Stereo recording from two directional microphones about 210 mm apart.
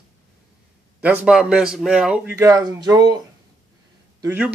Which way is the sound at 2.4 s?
15° right (ahead or behind).